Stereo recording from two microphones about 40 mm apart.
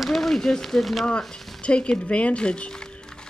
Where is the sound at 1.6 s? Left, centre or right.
Left.